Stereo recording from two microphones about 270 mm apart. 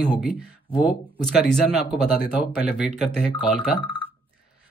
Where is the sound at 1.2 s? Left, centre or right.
Centre.